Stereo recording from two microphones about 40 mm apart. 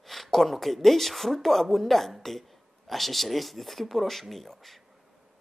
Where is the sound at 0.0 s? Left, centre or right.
Centre.